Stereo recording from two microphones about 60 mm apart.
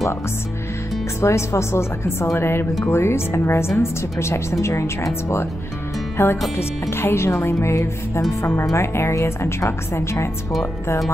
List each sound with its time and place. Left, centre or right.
1.2 s speech: left